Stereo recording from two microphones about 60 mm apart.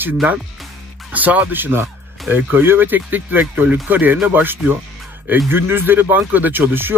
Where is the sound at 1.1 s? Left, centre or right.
Right.